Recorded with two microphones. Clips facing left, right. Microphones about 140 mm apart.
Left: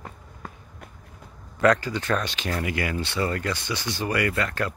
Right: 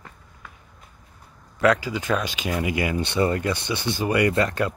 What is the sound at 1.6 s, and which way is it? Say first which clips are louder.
Speech: even; 5° right (ahead or behind).